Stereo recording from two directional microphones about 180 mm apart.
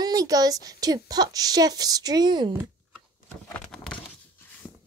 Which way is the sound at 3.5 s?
5° left (ahead or behind).